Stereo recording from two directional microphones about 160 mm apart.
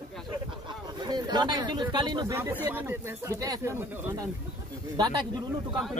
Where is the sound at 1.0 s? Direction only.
25° right (ahead or behind).